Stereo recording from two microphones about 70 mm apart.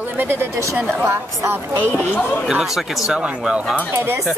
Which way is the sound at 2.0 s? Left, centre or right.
Left.